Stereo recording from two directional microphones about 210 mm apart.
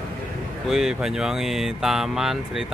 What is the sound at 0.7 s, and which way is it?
Speech, 5° right (ahead or behind).